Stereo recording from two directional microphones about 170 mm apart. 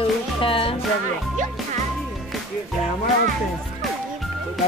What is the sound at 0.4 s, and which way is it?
Music, 30° left (ahead or behind).